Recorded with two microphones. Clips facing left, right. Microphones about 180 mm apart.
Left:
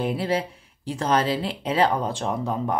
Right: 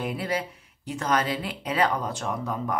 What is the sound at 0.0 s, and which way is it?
Speech, 30° left (ahead or behind).